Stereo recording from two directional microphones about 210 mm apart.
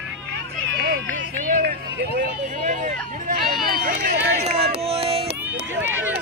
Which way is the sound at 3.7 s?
40° right (ahead or behind).